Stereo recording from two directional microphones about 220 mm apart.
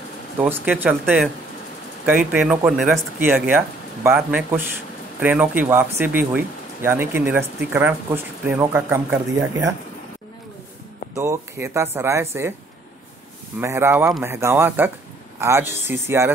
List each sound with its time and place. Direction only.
0.4 s speech: 10° right (ahead or behind)
11.1 s speech: 15° right (ahead or behind)
13.6 s speech: 10° right (ahead or behind)